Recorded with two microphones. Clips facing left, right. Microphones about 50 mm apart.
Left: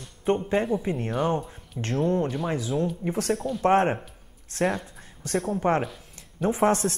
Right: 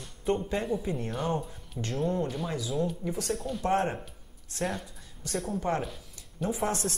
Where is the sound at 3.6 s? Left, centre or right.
Left.